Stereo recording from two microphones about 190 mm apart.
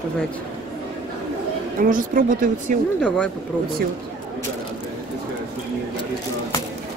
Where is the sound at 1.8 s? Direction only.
45° right (ahead or behind).